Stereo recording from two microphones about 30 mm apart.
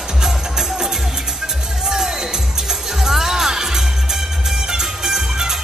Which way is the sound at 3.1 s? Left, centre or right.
Centre.